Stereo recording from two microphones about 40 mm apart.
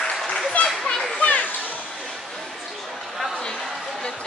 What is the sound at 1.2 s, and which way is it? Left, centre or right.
Children playing, left.